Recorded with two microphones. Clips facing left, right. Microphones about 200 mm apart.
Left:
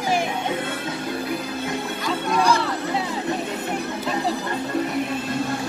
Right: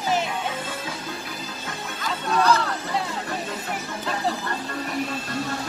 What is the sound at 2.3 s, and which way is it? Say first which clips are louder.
Music: even; 10° left (ahead or behind).